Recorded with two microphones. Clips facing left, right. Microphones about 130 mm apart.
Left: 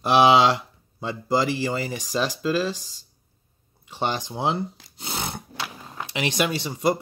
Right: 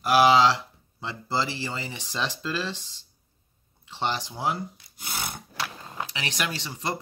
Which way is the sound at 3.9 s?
15° left (ahead or behind).